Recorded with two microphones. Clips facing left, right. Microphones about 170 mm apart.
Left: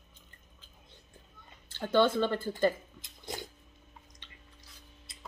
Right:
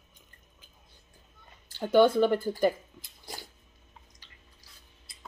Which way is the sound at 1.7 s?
10° right (ahead or behind).